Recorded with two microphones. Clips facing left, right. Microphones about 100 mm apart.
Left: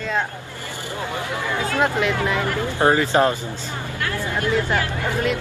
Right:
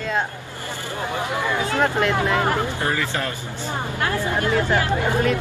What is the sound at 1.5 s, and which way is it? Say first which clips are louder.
Speech: left 1 dB; 20° right (ahead or behind).